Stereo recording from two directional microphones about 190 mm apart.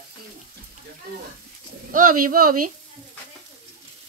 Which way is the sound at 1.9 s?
45° right (ahead or behind).